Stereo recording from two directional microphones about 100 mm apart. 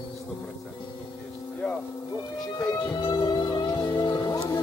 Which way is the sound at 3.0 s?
55° left (ahead or behind).